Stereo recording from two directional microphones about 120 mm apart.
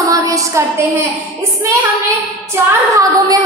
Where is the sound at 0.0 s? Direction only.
30° right (ahead or behind).